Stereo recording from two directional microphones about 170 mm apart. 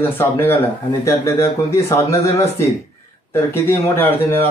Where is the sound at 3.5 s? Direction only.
15° left (ahead or behind).